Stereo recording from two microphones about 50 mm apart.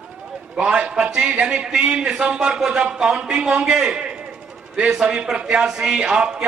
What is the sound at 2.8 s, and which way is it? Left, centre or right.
A man's voice, right.